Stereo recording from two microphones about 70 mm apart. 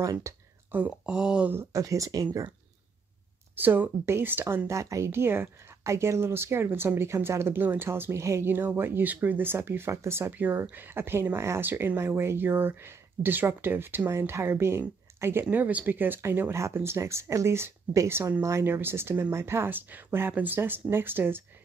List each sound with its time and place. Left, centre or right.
0.0 s speech: right
0.7 s speech: right
1.7 s speech: right
3.5 s speech: right
4.6 s speech: right
5.1 s speech: right
8.5 s speech: right
10.3 s speech: right
14.0 s speech: right
15.5 s speech: right
16.2 s speech: right